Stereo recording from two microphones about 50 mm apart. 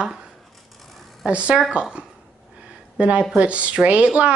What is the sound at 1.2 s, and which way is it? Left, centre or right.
Speech, right.